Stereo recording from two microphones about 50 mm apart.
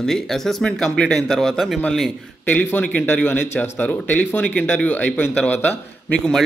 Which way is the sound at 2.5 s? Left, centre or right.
Left.